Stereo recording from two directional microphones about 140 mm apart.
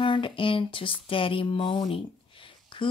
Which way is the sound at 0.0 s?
35° left (ahead or behind).